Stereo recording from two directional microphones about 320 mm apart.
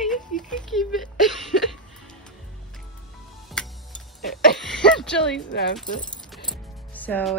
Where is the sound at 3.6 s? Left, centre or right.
Centre.